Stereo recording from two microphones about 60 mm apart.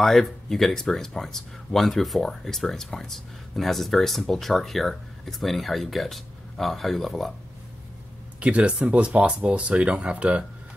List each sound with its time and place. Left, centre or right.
0.0 s speech: centre
8.4 s speech: right